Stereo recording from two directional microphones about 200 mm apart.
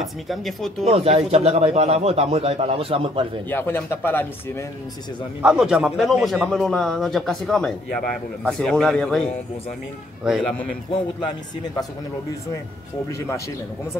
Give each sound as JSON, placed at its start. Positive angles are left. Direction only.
{"t": 0.0, "sound": "a man's voice", "side_deg": 0}
{"t": 0.8, "sound": "speech", "side_deg": -30}
{"t": 3.4, "sound": "speech", "side_deg": 10}
{"t": 5.4, "sound": "a man's voice", "side_deg": -5}
{"t": 10.2, "sound": "a man's voice", "side_deg": -5}
{"t": 10.9, "sound": "speech", "side_deg": 20}